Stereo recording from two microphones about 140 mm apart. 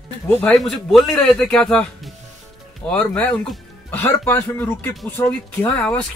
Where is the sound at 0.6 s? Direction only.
Centre (ahead or behind); by 5.3 s 20° left (ahead or behind).